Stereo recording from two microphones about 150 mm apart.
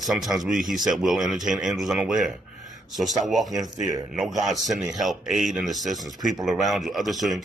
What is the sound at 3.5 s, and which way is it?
Speech, 25° right (ahead or behind).